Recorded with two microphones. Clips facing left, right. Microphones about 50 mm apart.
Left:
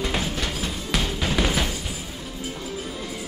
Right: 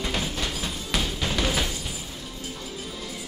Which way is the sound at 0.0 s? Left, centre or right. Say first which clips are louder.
Left 2 dB; centre.